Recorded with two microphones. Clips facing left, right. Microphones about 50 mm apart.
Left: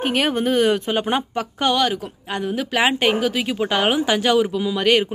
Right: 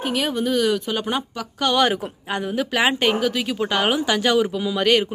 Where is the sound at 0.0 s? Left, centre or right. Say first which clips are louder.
Left 3 dB; left.